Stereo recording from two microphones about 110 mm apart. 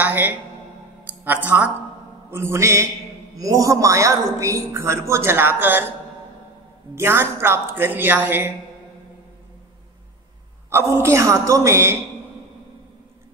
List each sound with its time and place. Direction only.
0.0 s a woman's voice: 15° right (ahead or behind)
7.0 s a man's voice: 20° right (ahead or behind)
10.7 s a man's voice: 25° right (ahead or behind)